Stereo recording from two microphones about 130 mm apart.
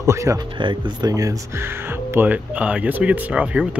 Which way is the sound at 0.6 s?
35° right (ahead or behind).